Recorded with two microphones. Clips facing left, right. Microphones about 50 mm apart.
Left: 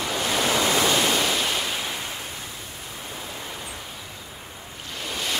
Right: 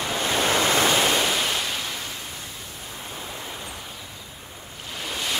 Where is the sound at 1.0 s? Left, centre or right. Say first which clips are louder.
Right 1 dB; centre.